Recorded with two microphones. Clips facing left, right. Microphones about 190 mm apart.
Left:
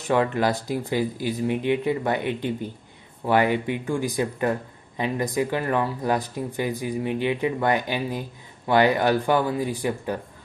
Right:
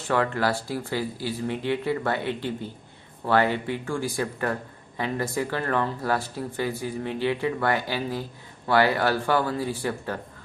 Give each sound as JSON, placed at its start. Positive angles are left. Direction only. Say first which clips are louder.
{"t": 0.1, "sound": "speech", "louder": "left 3 dB", "side_deg": 20}